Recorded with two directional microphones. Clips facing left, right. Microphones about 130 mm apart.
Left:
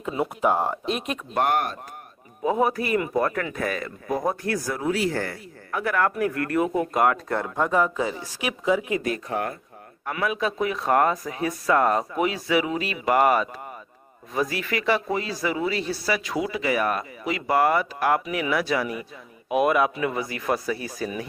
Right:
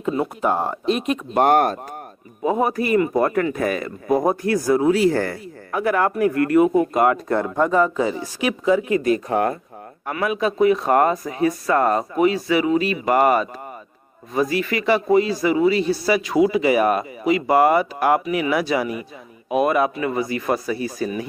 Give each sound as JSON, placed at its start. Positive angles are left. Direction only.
{"t": 0.1, "sound": "a man's voice", "side_deg": 5}
{"t": 1.4, "sound": "speech", "side_deg": -40}
{"t": 2.4, "sound": "a man's voice", "side_deg": -5}
{"t": 4.7, "sound": "speech", "side_deg": -25}
{"t": 5.1, "sound": "speech", "side_deg": -45}
{"t": 5.7, "sound": "a man's voice", "side_deg": -15}
{"t": 10.2, "sound": "a man's voice", "side_deg": -5}
{"t": 19.5, "sound": "a man's voice", "side_deg": 5}